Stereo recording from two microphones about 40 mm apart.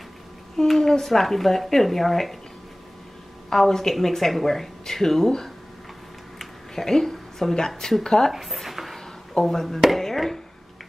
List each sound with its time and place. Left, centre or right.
0.6 s speech: centre
3.4 s a woman's voice: centre
6.3 s a sound: centre
8.0 s speech: centre
8.3 s speech: centre
8.9 s a sound: centre
9.9 s speech: centre